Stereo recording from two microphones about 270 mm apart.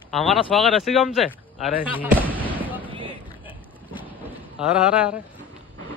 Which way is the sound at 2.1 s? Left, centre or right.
Centre.